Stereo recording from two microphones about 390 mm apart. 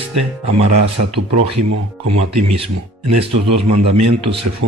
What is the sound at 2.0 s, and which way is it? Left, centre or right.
Speech, right.